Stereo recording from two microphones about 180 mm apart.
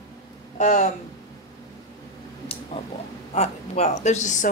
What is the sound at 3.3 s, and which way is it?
Speech, 40° left (ahead or behind).